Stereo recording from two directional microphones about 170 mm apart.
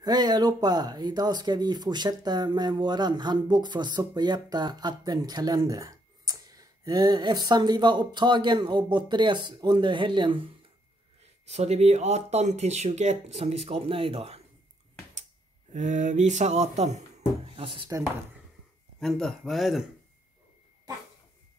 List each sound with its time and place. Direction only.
0.0 s speech: 25° right (ahead or behind)
11.4 s speech: 40° right (ahead or behind)
15.7 s speech: 45° right (ahead or behind)
17.6 s speech: 30° right (ahead or behind)
18.9 s speech: 5° left (ahead or behind)